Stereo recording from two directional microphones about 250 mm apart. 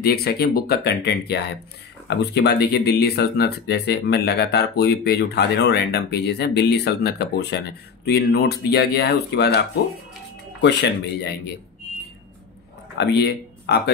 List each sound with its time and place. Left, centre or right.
0.0 s speech: left
10.6 s speech: left
12.9 s speech: left